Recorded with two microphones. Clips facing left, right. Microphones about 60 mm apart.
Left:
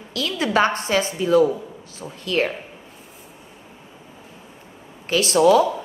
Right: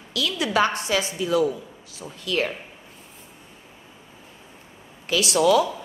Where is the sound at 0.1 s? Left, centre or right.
Left.